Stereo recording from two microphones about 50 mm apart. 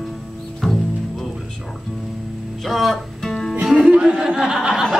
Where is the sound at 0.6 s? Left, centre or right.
Centre.